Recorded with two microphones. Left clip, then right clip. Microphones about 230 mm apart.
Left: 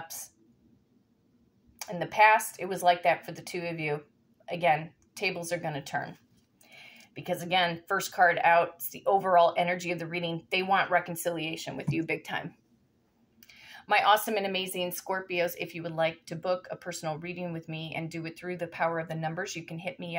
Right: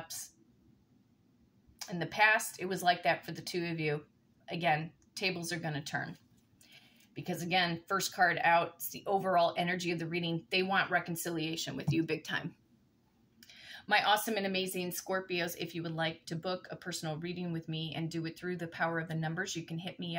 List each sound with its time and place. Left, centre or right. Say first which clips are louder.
1.8 s speech: left 6 dB; centre
13.5 s speech: left 3 dB; centre